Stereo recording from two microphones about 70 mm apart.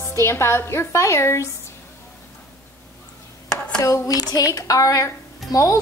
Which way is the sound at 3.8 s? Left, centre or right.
Left.